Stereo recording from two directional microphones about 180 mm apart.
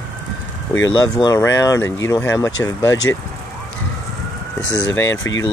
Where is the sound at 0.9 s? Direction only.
20° left (ahead or behind).